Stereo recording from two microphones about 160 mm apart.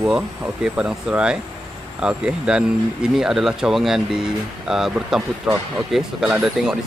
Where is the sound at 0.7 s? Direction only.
10° right (ahead or behind).